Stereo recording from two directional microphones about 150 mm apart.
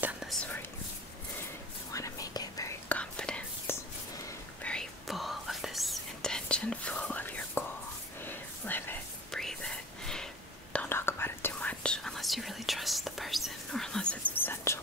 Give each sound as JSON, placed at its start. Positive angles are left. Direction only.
{"t": 0.0, "sound": "whispering", "side_deg": -5}
{"t": 1.9, "sound": "whispering", "side_deg": 20}
{"t": 2.9, "sound": "whispering", "side_deg": 5}
{"t": 14.3, "sound": "whispering", "side_deg": 15}